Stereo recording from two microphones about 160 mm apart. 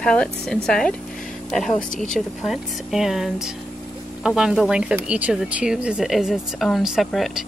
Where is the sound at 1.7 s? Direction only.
50° left (ahead or behind).